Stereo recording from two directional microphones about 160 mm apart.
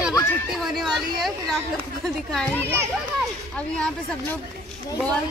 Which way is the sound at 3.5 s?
10° left (ahead or behind).